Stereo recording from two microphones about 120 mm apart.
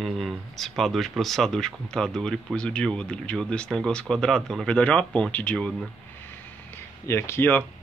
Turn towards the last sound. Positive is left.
turn(degrees=15)  # may be behind; listen again after turning